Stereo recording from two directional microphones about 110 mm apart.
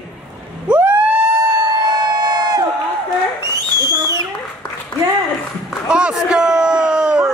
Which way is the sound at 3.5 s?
35° right (ahead or behind).